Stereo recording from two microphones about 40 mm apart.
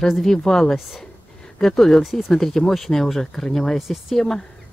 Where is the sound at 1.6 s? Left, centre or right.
Centre.